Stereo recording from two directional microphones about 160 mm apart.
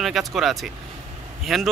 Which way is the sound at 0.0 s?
Centre (ahead or behind).